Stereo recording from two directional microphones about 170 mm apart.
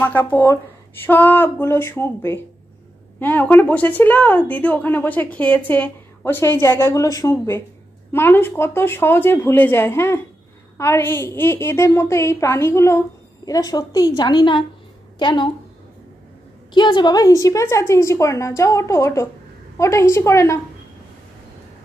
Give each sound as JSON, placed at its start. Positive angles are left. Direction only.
{"t": 0.0, "sound": "a woman's voice", "side_deg": 10}
{"t": 16.7, "sound": "a woman's voice", "side_deg": 25}